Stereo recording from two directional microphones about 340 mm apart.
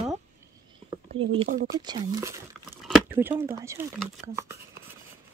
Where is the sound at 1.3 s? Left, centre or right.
Centre.